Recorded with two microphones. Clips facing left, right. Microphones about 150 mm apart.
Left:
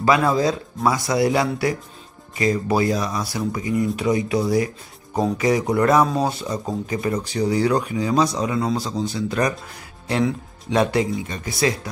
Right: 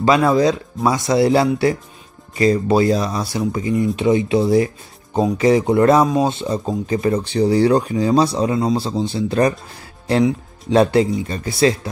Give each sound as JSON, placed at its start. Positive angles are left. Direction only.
{"t": 0.0, "sound": "speech", "side_deg": -25}
{"t": 10.7, "sound": "speech", "side_deg": -30}